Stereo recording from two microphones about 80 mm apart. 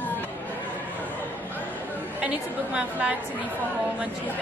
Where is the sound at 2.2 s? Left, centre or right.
Centre.